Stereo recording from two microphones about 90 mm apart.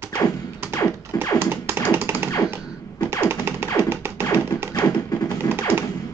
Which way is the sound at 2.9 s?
25° right (ahead or behind).